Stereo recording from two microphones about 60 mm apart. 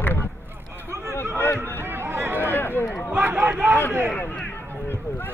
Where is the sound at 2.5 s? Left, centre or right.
Left.